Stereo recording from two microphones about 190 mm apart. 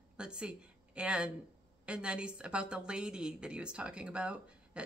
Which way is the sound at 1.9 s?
5° right (ahead or behind).